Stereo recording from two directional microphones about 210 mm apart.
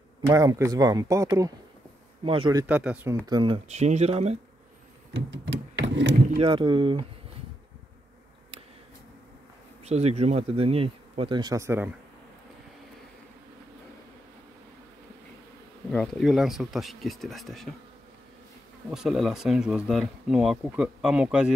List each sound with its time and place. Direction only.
0.3 s speech: 15° right (ahead or behind)
2.6 s speech: 5° right (ahead or behind)
3.3 s speech: 20° right (ahead or behind)
5.1 s a sound: 60° right (ahead or behind)
6.3 s speech: 25° right (ahead or behind)
9.8 s speech: 30° right (ahead or behind); by 11.9 s 10° right (ahead or behind)
15.9 s speech: 5° left (ahead or behind)
18.9 s speech: centre (ahead or behind)